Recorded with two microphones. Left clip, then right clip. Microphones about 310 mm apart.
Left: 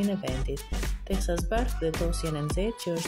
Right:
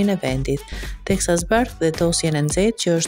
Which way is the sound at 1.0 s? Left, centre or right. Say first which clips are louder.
Right 12 dB; right.